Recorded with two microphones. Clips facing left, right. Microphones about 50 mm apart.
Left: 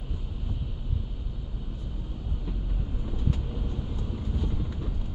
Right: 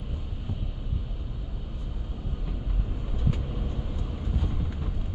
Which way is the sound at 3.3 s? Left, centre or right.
Centre.